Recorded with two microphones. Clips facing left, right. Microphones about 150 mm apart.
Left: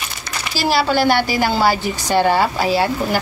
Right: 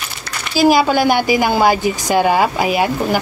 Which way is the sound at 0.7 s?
15° right (ahead or behind).